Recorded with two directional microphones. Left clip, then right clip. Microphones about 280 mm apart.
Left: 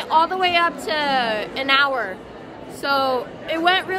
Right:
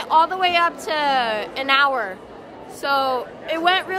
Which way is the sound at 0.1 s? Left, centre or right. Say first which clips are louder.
Right 1 dB; centre.